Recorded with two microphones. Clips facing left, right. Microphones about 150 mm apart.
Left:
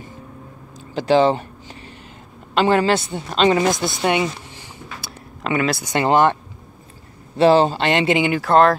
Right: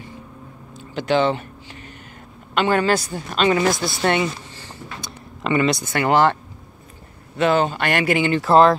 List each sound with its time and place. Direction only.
0.7 s a sound: 35° left (ahead or behind)
2.5 s a woman's voice: 30° left (ahead or behind)
4.0 s a sound: 15° left (ahead or behind)
5.4 s speech: 5° left (ahead or behind)
5.9 s a woman's voice: 20° left (ahead or behind)
7.3 s a woman's voice: 30° left (ahead or behind)
8.4 s speech: centre (ahead or behind)